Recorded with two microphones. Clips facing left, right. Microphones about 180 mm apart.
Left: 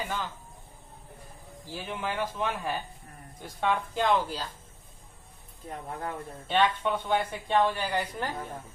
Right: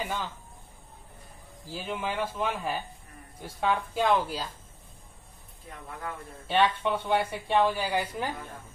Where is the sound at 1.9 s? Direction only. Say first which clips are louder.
Right 1 dB; 10° right (ahead or behind).